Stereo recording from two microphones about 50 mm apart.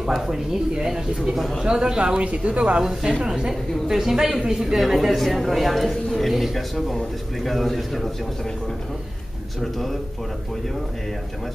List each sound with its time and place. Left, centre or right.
0.1 s a woman's voice: centre
9.6 s a man's voice: centre